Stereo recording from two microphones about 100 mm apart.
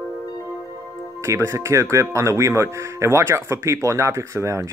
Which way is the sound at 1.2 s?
30° right (ahead or behind).